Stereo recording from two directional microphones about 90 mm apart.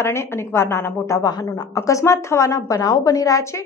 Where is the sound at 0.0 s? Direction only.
30° left (ahead or behind).